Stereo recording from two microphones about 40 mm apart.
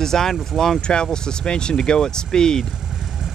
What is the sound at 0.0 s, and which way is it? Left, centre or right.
Speech, centre.